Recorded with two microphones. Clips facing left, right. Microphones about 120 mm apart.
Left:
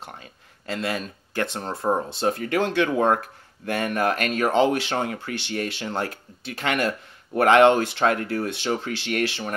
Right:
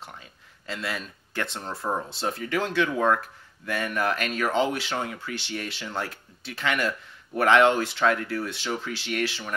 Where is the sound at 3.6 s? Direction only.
55° left (ahead or behind).